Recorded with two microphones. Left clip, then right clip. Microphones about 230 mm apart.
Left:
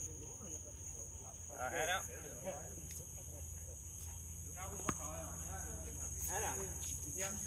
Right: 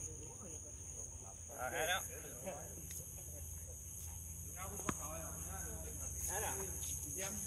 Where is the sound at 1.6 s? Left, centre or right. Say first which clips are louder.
Even; centre.